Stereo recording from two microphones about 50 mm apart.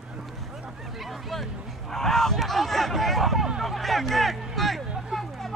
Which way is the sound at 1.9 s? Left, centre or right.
Centre.